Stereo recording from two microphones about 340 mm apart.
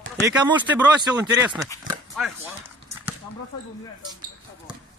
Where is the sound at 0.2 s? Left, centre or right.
Centre.